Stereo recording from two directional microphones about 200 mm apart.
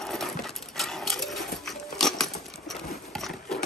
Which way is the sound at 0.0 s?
Centre (ahead or behind).